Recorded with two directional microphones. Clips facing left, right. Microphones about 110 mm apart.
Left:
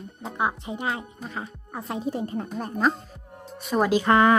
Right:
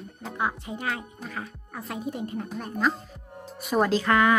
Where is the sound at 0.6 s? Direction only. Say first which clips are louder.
Left 2 dB; 20° left (ahead or behind).